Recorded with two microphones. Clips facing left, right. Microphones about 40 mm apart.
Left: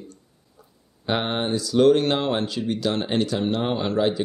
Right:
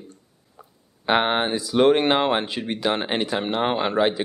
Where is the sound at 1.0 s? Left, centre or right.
Right.